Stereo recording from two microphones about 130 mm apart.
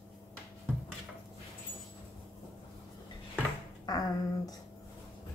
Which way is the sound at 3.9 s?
30° left (ahead or behind).